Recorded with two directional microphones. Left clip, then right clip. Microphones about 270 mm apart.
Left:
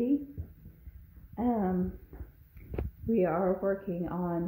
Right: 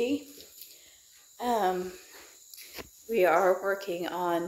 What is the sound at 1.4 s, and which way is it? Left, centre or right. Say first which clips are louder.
Speech: right 4 dB; centre.